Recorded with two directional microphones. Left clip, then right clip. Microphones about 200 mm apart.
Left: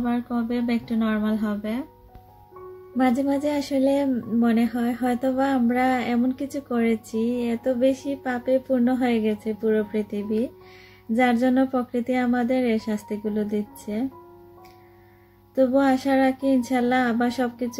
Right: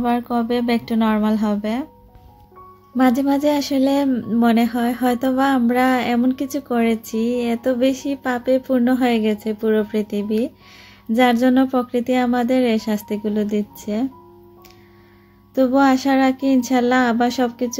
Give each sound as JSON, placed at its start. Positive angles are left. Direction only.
{"t": 0.0, "sound": "speech", "side_deg": -40}
{"t": 3.0, "sound": "speech", "side_deg": -25}
{"t": 15.5, "sound": "speech", "side_deg": -20}